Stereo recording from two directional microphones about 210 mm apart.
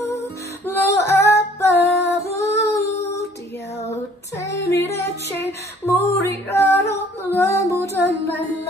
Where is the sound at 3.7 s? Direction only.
30° left (ahead or behind).